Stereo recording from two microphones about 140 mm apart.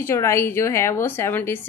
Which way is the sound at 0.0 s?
20° left (ahead or behind).